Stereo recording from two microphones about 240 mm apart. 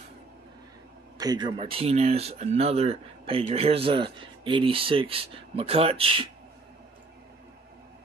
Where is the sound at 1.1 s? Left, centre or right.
Centre.